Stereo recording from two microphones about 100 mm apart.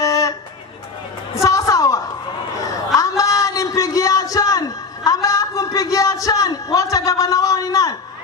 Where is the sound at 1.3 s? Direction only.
30° left (ahead or behind).